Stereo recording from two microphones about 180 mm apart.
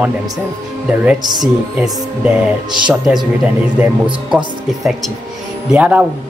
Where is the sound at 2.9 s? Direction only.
Centre (ahead or behind).